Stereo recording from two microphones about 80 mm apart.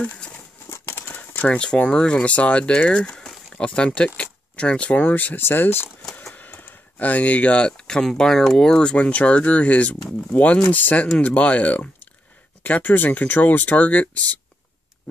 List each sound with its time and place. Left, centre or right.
0.0 s speech: centre
0.7 s a sound: left
1.1 s speech: centre